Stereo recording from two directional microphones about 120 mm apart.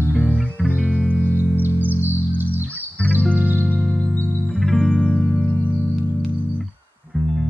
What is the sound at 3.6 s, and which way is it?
Music, 5° left (ahead or behind).